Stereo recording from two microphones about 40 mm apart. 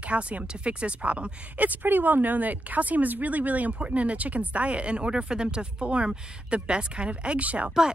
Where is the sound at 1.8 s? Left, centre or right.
Right.